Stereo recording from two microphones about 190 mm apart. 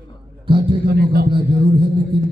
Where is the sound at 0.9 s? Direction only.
55° right (ahead or behind).